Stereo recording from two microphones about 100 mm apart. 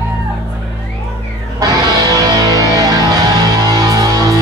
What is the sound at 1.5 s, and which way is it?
Music, 40° right (ahead or behind).